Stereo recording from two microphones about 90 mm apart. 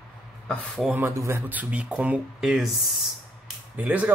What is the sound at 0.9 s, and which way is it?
Speech, 30° right (ahead or behind).